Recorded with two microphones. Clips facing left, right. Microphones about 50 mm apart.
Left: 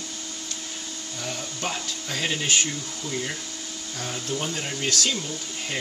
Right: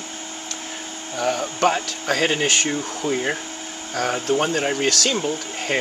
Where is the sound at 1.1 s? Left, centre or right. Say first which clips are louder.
Right 12 dB; right.